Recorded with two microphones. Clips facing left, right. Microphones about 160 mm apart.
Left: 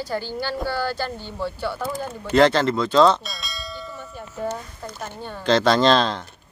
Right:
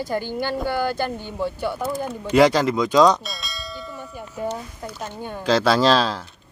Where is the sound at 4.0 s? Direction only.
10° right (ahead or behind).